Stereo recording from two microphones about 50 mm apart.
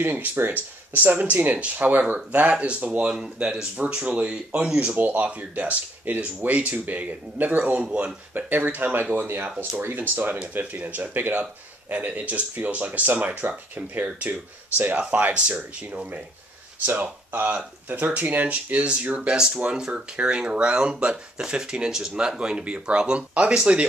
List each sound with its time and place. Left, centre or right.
0.0 s speech: right
16.8 s speech: right; by 23.9 s centre